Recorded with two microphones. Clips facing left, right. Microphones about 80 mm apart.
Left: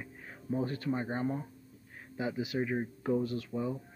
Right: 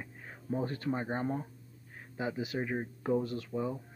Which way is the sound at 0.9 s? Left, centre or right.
Right.